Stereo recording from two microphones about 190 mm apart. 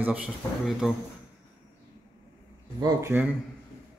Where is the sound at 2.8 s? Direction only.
20° right (ahead or behind).